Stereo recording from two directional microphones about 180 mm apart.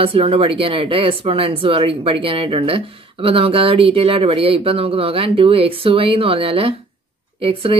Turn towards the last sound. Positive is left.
turn(degrees=-30)  # may be behind; listen again after turning